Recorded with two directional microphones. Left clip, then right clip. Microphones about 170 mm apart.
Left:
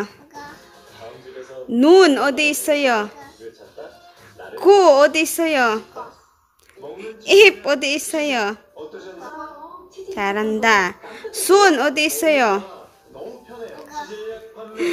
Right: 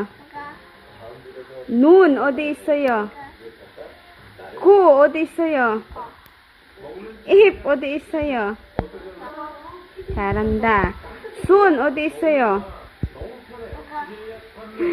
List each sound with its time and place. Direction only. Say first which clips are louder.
1.8 s a woman's voice: left 1 dB; 15° left (ahead or behind)
4.6 s a woman's voice: left 1 dB; 15° left (ahead or behind)
7.2 s a woman's voice: left 2 dB; 15° left (ahead or behind)
10.1 s a woman's voice: left 1 dB; 15° left (ahead or behind)